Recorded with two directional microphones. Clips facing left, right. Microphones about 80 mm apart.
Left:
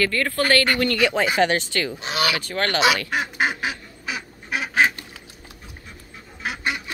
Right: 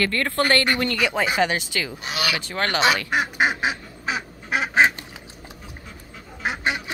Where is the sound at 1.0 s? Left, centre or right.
Centre.